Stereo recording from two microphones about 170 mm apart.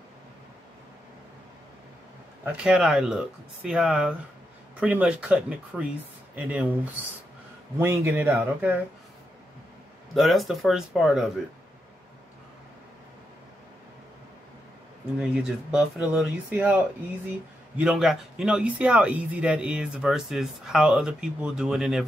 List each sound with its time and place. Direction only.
2.4 s speech: 5° right (ahead or behind)
10.1 s speech: centre (ahead or behind)
15.1 s speech: 5° right (ahead or behind)